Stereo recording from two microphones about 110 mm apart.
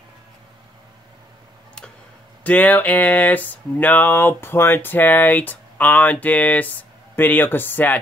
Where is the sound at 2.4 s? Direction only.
15° left (ahead or behind).